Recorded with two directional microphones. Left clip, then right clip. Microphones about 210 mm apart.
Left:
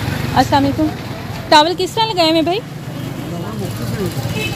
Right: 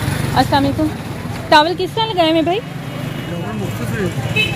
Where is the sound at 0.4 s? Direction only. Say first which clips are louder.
Left 1 dB; 15° left (ahead or behind).